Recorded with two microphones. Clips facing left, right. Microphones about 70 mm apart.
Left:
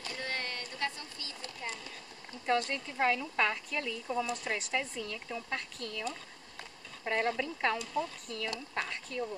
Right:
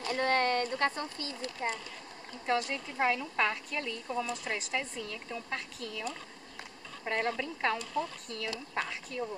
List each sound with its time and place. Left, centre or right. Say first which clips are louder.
0.1 s speech: right 11 dB; right
2.4 s speech: even; centre